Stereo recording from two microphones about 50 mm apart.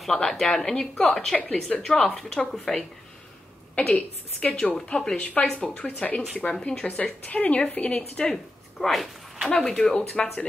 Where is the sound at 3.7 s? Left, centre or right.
Left.